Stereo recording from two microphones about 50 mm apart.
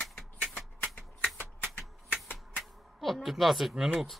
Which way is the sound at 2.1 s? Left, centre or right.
Left.